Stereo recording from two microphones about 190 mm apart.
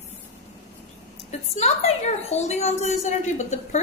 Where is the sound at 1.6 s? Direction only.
35° left (ahead or behind).